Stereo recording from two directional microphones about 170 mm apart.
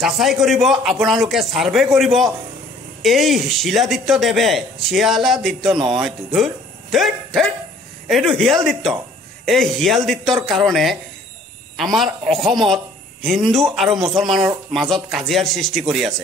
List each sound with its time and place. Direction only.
0.0 s a man's voice: centre (ahead or behind)